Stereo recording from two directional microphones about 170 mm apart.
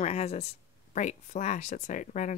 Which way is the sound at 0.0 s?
40° left (ahead or behind).